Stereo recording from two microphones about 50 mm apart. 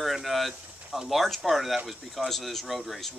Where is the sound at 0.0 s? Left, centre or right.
Centre.